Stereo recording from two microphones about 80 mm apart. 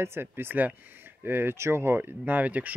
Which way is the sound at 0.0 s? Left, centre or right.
Right.